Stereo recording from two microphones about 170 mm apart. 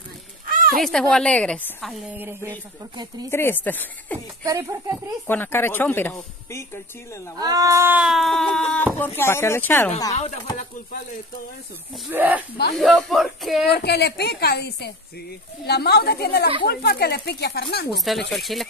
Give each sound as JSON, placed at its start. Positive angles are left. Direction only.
{"t": 0.5, "sound": "fowl", "side_deg": -55}
{"t": 0.8, "sound": "a woman's voice", "side_deg": 5}
{"t": 2.1, "sound": "speech", "side_deg": -15}
{"t": 3.3, "sound": "speech", "side_deg": 15}
{"t": 4.4, "sound": "speech", "side_deg": -20}
{"t": 5.2, "sound": "speech", "side_deg": 10}
{"t": 7.3, "sound": "speech", "side_deg": -20}
{"t": 10.1, "sound": "speech", "side_deg": 40}
{"t": 12.1, "sound": "speech", "side_deg": -10}
{"t": 12.7, "sound": "a woman's voice", "side_deg": 0}
{"t": 13.7, "sound": "a woman's voice", "side_deg": 70}
{"t": 18.3, "sound": "a woman's voice", "side_deg": 0}